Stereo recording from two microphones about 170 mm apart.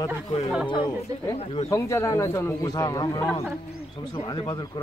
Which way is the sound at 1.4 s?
35° left (ahead or behind).